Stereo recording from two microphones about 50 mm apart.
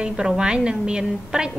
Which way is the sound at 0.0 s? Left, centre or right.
Centre.